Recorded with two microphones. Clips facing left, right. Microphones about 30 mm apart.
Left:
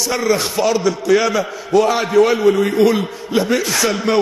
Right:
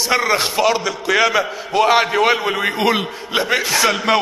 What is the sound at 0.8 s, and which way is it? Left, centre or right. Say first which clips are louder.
Speech: left 2 dB; centre.